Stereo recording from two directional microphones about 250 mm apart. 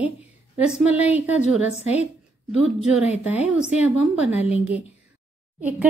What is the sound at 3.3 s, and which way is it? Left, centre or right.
Speech, centre.